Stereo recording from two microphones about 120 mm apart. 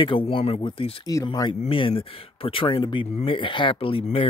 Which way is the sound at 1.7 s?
50° left (ahead or behind).